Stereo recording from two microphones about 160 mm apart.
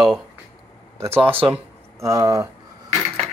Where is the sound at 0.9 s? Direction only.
15° right (ahead or behind).